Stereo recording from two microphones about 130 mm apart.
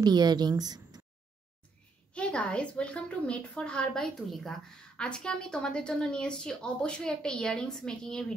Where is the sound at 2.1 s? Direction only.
10° left (ahead or behind).